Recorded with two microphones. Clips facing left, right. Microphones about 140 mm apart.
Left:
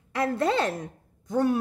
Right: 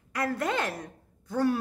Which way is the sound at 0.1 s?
25° left (ahead or behind).